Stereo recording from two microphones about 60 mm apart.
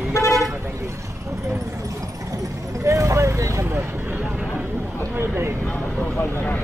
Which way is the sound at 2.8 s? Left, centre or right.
Right.